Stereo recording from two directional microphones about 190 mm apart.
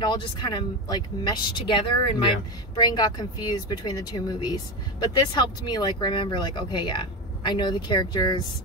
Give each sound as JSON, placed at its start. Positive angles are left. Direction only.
{"t": 0.0, "sound": "speech", "side_deg": 25}